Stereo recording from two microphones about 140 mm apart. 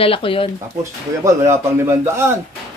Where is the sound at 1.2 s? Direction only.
20° right (ahead or behind).